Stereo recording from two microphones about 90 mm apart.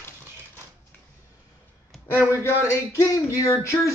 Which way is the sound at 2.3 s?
30° left (ahead or behind).